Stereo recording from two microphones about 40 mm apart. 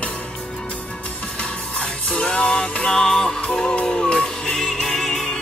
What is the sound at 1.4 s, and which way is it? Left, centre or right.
Music, left.